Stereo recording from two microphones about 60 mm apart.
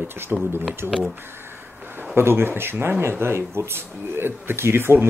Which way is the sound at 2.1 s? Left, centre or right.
Right.